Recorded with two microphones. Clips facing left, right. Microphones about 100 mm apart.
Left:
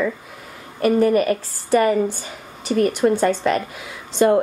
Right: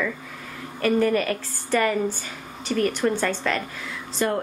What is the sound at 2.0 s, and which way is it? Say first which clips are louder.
Speech: left 2 dB; 35° left (ahead or behind).